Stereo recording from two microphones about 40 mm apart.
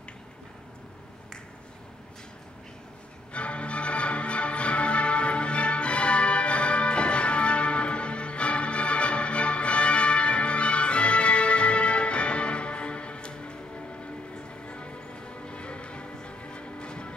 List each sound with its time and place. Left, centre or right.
3.3 s music: left